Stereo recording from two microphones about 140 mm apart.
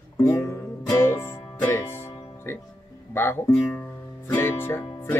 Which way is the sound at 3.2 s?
15° left (ahead or behind).